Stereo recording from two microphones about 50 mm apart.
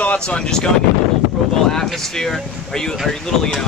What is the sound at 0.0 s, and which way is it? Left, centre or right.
Wind noise, left.